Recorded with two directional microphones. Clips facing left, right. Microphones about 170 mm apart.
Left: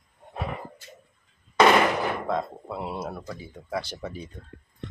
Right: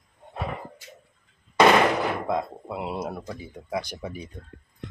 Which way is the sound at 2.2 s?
15° right (ahead or behind).